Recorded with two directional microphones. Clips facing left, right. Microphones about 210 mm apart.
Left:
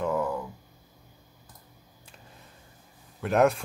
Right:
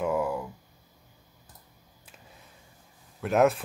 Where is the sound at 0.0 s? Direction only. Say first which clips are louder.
Even; 10° right (ahead or behind).